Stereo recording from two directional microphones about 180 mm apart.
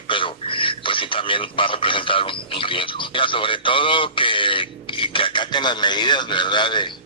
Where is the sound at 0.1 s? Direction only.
30° left (ahead or behind).